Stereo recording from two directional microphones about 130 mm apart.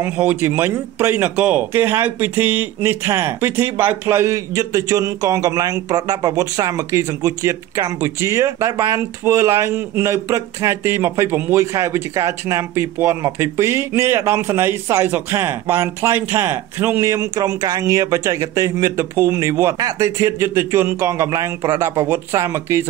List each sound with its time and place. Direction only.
0.0 s speech: 15° right (ahead or behind)
8.9 s speech: 20° right (ahead or behind)